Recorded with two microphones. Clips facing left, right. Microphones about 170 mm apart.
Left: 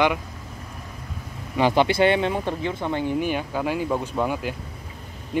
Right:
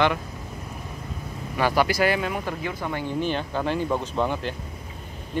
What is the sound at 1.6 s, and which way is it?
Speech, 20° left (ahead or behind).